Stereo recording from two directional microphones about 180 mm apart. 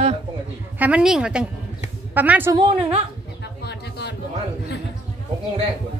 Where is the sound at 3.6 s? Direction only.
65° left (ahead or behind).